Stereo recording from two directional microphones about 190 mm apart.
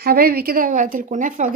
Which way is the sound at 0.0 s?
55° right (ahead or behind).